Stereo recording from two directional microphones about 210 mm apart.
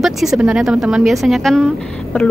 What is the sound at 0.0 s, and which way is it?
A woman's voice, centre (ahead or behind).